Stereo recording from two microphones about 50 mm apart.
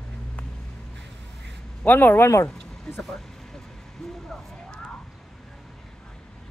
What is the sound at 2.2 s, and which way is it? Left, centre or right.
Speech, left.